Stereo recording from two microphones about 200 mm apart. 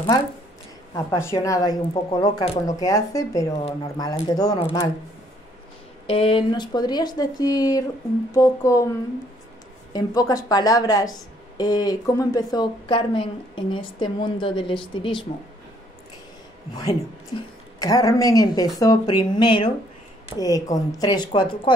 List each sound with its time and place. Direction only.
0.9 s a woman's voice: 15° left (ahead or behind)
6.0 s a woman's voice: 25° left (ahead or behind)
9.9 s speech: 20° left (ahead or behind)
17.7 s a woman's voice: 15° left (ahead or behind)